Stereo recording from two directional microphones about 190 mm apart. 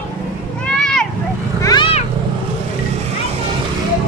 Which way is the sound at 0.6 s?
5° left (ahead or behind).